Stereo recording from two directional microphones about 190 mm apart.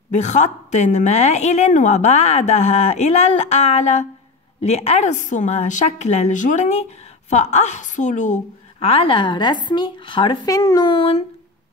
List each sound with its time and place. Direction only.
0.1 s a woman's voice: 40° left (ahead or behind)